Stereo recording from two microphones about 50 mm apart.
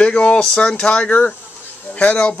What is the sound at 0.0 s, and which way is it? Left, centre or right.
Speech, left.